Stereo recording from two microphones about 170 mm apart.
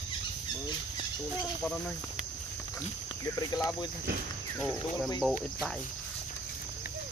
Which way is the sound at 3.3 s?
20° left (ahead or behind).